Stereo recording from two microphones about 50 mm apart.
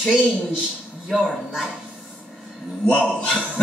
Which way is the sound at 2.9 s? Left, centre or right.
Left.